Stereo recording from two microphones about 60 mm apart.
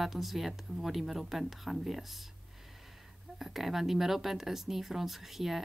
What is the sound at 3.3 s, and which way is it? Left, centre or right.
A woman's voice, centre.